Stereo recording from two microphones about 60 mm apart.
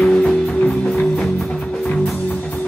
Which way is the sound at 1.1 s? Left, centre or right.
Centre.